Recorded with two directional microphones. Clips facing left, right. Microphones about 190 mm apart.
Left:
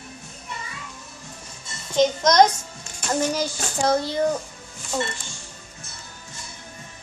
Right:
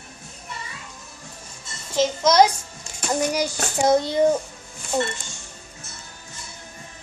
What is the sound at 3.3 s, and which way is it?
A woman's voice, 20° right (ahead or behind).